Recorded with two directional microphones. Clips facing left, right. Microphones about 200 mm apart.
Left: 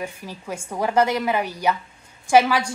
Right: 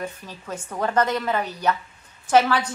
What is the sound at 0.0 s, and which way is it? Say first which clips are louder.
A woman's voice: left 1 dB; 10° left (ahead or behind).